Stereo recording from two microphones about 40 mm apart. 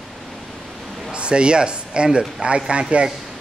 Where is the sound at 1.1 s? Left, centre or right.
Right.